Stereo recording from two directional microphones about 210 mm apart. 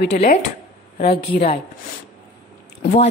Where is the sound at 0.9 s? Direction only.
30° left (ahead or behind).